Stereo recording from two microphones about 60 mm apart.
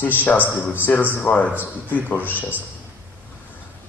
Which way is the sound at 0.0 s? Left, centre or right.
Left.